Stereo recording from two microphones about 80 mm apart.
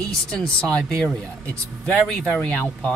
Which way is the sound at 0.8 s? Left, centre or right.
Centre.